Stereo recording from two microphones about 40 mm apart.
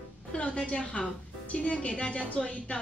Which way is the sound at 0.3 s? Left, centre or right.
Left.